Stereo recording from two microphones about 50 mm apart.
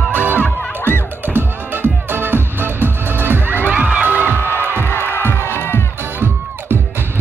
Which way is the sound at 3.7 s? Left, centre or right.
Right.